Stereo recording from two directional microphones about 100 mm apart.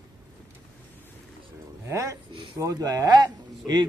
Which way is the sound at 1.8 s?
30° right (ahead or behind).